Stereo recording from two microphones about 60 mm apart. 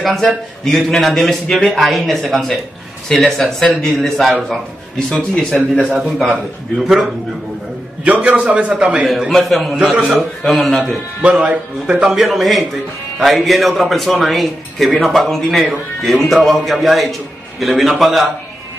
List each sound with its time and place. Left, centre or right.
0.0 s a man's voice: centre
5.5 s a man's voice: centre
6.0 s a man's voice: centre
8.0 s a man's voice: right
9.0 s a man's voice: centre
10.4 s a man's voice: centre
11.2 s a man's voice: right
12.2 s a man's voice: centre